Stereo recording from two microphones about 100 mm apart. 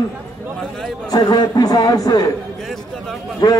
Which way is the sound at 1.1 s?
45° left (ahead or behind).